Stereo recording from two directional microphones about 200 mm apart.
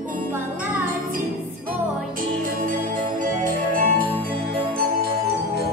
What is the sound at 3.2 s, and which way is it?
Music, 45° right (ahead or behind).